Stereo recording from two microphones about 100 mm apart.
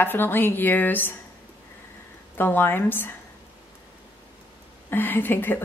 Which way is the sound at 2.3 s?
20° left (ahead or behind).